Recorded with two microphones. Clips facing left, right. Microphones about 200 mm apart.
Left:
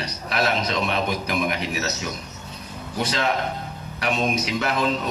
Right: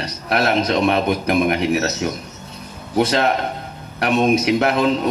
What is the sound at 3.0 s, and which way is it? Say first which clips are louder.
A man's voice: right 7 dB; 60° right (ahead or behind).